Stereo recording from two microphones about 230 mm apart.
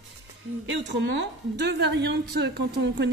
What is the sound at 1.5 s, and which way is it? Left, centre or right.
A woman's voice, right.